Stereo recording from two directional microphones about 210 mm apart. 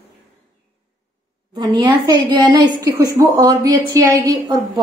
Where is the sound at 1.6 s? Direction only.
20° right (ahead or behind).